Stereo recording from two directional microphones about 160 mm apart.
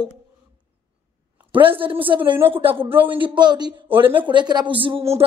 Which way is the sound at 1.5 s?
35° right (ahead or behind).